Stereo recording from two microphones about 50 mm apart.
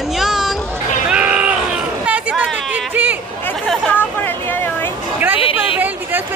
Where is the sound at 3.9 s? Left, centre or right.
Left.